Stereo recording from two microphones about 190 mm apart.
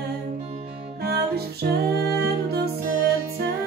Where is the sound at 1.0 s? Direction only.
55° right (ahead or behind).